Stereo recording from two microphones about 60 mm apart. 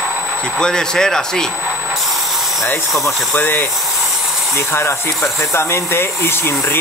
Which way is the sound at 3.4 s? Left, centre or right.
Left.